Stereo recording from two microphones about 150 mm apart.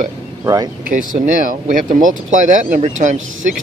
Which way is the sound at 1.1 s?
60° right (ahead or behind).